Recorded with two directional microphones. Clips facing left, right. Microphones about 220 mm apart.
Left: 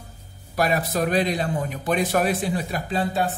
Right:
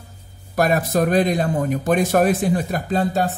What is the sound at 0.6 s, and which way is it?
Speech, 45° right (ahead or behind).